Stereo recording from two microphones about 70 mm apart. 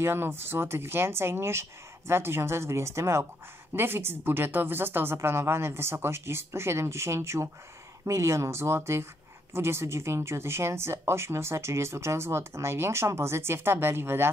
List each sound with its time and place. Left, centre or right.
0.0 s speech: right